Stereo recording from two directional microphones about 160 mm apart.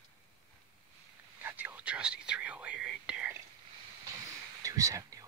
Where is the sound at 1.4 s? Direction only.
10° right (ahead or behind).